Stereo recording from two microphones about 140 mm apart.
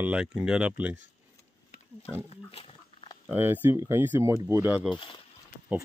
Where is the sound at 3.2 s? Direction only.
15° right (ahead or behind).